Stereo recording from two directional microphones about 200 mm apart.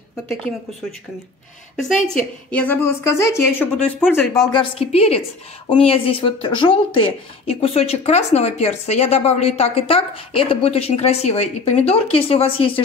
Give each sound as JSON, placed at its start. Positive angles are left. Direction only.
{"t": 1.8, "sound": "a woman's voice", "side_deg": 0}